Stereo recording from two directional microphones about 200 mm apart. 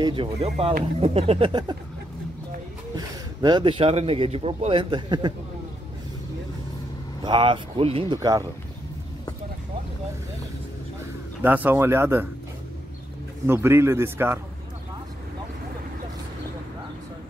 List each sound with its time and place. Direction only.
0.0 s a man's voice: 25° right (ahead or behind)
3.0 s a man's voice: 20° right (ahead or behind)
7.2 s a man's voice: 25° right (ahead or behind)
11.4 s a man's voice: 10° right (ahead or behind)
13.5 s a man's voice: 10° right (ahead or behind)